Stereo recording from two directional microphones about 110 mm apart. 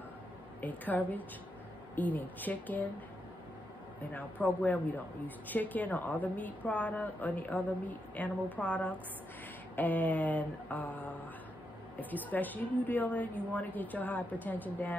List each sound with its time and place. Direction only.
0.6 s a woman's voice: 15° left (ahead or behind)
4.1 s a woman's voice: 15° left (ahead or behind)